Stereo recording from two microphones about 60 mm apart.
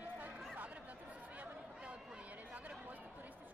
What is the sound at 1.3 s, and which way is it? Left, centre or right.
Chatter, right.